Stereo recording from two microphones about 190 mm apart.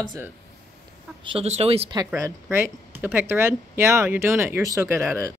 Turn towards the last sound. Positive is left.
turn(degrees=-15)  # may be behind; listen again after turning